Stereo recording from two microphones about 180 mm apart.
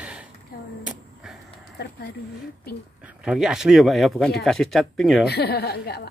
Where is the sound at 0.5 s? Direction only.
55° left (ahead or behind).